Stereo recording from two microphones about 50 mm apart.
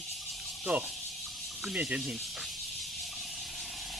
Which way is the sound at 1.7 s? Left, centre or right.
Right.